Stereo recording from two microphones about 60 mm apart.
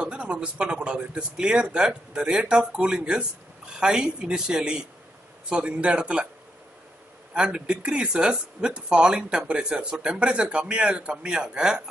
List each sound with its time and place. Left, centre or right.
0.0 s speech: centre
7.3 s speech: centre